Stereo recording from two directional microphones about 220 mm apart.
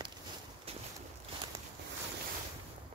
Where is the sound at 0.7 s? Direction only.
25° right (ahead or behind).